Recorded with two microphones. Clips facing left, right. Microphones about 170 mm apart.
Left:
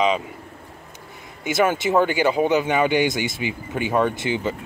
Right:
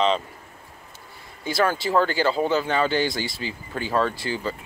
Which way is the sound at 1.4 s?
20° left (ahead or behind).